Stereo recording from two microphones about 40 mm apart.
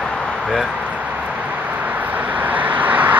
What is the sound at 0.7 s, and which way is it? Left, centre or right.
Vehicle, right.